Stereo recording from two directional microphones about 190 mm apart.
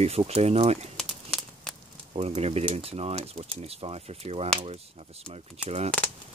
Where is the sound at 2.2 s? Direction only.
35° right (ahead or behind).